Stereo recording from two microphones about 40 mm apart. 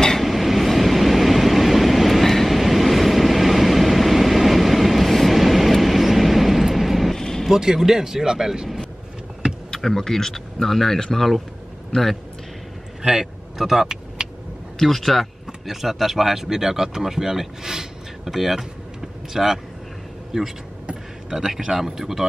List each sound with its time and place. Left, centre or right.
0.2 s train: centre
7.2 s vehicle: centre
7.4 s speech: centre
9.7 s a man's voice: centre
13.0 s speech: centre
14.8 s speech: centre